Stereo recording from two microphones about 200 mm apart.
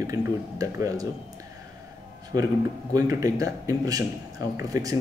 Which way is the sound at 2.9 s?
15° right (ahead or behind).